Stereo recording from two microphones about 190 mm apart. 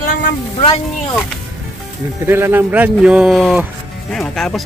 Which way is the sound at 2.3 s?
10° right (ahead or behind).